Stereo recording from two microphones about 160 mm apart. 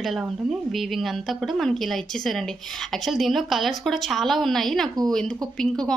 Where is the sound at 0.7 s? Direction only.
Centre (ahead or behind).